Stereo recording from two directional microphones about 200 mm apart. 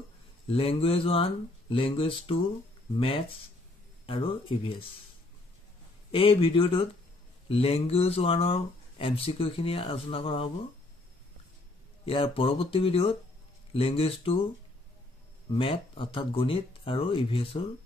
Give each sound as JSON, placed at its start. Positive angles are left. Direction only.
{"t": 0.5, "sound": "speech", "side_deg": 30}
{"t": 6.1, "sound": "speech", "side_deg": 25}
{"t": 12.1, "sound": "speech", "side_deg": 25}
{"t": 15.5, "sound": "speech", "side_deg": 25}